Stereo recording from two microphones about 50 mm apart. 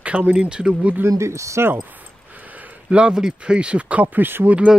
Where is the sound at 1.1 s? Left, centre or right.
Right.